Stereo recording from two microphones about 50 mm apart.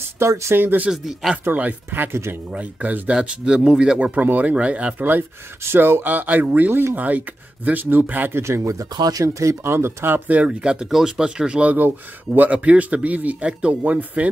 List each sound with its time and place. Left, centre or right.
0.2 s speech: right
0.6 s speech: right
0.8 s speech: centre
1.4 s speech: right
3.1 s speech: centre
5.7 s speech: right
6.7 s speech: right
7.0 s speech: right
8.3 s speech: right
10.1 s speech: right
10.6 s speech: centre
10.9 s speech: centre; by 14.3 s right